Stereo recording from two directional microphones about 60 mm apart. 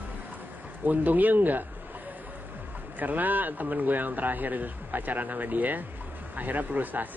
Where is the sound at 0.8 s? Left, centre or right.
Right.